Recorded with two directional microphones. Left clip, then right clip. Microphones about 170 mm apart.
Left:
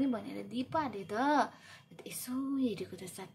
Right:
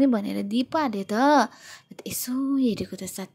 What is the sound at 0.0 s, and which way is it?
Speech, 50° right (ahead or behind).